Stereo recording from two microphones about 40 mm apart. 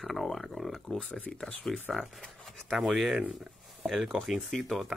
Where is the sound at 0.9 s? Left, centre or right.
Left.